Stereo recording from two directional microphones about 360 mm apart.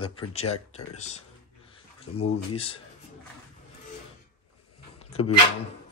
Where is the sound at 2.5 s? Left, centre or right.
Centre.